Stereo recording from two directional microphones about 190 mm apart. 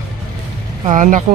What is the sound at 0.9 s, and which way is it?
Speech, 40° right (ahead or behind).